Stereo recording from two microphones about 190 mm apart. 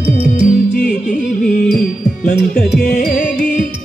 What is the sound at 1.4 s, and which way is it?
Carnatic music, 50° left (ahead or behind).